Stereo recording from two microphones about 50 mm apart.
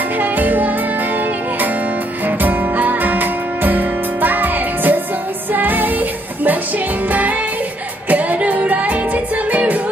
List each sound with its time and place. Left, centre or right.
0.2 s music: right